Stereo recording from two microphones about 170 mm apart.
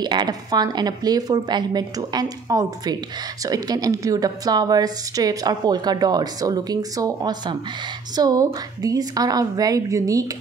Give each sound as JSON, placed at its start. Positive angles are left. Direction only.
{"t": 0.0, "sound": "a woman's voice", "side_deg": -25}